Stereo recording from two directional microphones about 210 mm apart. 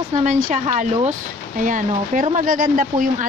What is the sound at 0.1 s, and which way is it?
Speech, 35° right (ahead or behind).